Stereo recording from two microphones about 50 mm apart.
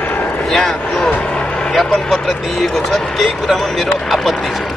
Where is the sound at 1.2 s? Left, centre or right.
Centre.